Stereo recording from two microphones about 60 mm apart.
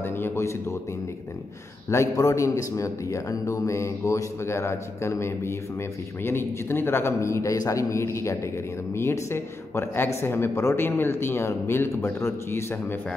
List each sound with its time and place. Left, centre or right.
0.0 s a sound: left
2.1 s speech: left
7.5 s a man's voice: left
7.9 s speech: left
10.9 s speech: left